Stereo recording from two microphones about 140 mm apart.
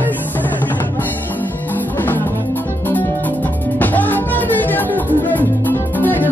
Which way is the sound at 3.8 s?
10° left (ahead or behind).